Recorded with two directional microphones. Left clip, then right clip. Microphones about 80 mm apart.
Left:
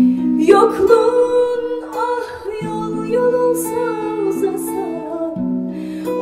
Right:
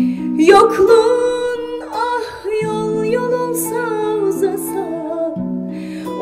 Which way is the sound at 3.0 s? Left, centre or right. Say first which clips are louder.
Left 6 dB; right.